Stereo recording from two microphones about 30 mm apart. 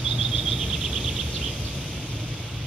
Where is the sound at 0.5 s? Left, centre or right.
Right.